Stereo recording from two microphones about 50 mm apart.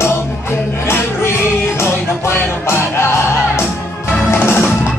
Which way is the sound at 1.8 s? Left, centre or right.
Left.